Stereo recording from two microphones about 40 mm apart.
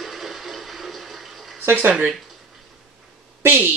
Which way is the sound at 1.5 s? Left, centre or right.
Right.